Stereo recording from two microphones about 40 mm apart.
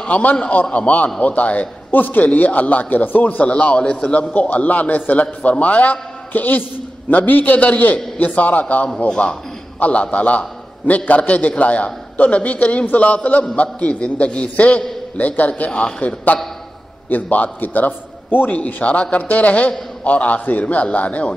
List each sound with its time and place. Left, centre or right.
0.1 s a man's voice: left
1.9 s a man's voice: left
3.4 s a man's voice: left
9.0 s a man's voice: left
9.8 s a man's voice: left